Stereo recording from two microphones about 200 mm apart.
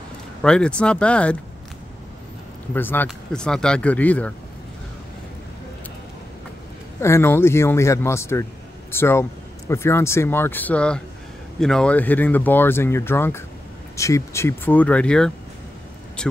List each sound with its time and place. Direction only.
0.4 s speech: 5° left (ahead or behind)
2.7 s speech: 10° left (ahead or behind)
7.0 s speech: 15° left (ahead or behind)